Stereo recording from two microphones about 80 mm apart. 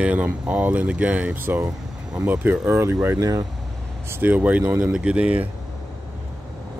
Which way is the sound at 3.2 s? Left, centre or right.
Right.